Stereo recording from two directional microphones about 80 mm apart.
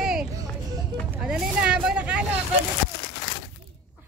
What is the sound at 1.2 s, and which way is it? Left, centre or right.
Speech, centre.